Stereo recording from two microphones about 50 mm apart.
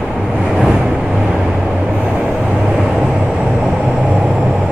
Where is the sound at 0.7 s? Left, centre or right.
Centre.